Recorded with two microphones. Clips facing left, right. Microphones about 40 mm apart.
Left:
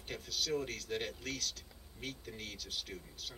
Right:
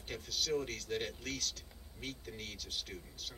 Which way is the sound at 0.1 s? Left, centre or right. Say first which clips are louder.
Right 1 dB; centre.